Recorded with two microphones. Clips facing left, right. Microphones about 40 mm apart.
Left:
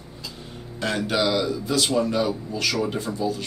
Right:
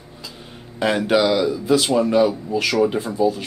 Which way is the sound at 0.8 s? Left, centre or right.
Right.